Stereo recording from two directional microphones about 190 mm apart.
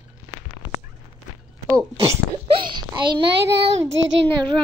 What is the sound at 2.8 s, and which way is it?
Speech, 25° right (ahead or behind).